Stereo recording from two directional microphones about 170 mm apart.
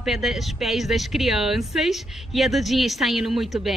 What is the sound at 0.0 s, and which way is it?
Speech, centre (ahead or behind).